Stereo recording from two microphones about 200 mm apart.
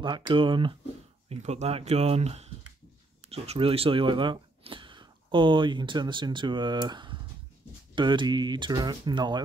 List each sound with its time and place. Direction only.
0.0 s speech: 25° right (ahead or behind)